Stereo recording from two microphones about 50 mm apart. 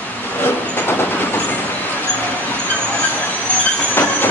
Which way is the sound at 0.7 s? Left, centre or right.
Left.